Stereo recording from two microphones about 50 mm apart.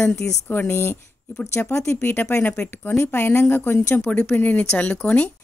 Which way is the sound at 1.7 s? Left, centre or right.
Left.